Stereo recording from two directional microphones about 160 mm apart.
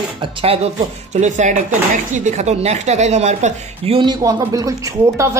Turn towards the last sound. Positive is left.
turn(degrees=-20)  # may be behind; listen again after turning